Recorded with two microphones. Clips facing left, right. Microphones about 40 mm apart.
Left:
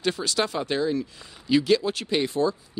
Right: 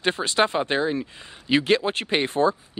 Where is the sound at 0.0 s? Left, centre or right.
Right.